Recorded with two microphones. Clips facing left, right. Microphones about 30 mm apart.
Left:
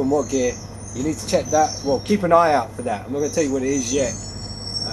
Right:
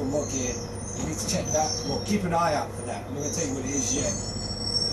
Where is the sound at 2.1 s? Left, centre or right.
Left.